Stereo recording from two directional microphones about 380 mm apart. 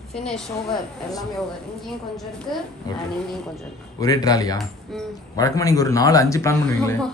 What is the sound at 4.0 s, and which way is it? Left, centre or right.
A woman's voice, centre.